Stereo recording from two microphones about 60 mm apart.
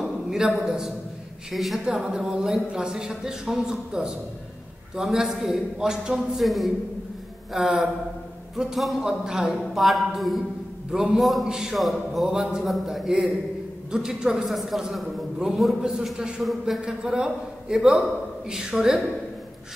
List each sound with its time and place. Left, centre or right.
0.0 s a sound: centre
0.6 s a man's voice: centre
1.9 s a man's voice: centre
6.4 s a man's voice: centre
10.9 s a man's voice: centre
11.1 s a man's voice: centre
16.8 s a man's voice: centre